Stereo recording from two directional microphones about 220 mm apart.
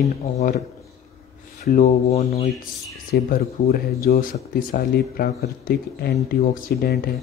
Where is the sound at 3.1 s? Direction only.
45° left (ahead or behind).